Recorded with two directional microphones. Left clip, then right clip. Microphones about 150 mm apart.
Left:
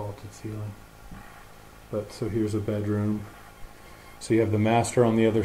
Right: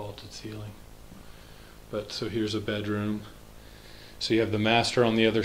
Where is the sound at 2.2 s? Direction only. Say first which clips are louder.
Left 2 dB; 10° right (ahead or behind).